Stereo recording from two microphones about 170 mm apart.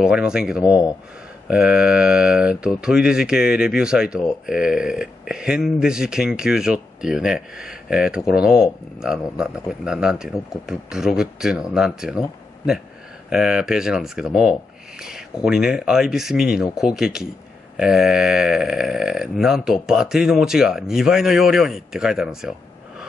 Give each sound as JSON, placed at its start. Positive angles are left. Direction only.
{"t": 0.0, "sound": "speech", "side_deg": -5}
{"t": 0.7, "sound": "speech", "side_deg": 20}
{"t": 1.5, "sound": "speech", "side_deg": -5}
{"t": 13.3, "sound": "speech", "side_deg": -5}